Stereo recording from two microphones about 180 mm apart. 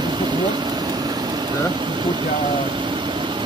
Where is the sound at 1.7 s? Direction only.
25° right (ahead or behind).